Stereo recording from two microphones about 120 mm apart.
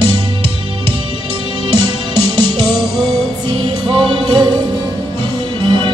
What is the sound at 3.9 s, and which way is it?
Music, 40° right (ahead or behind).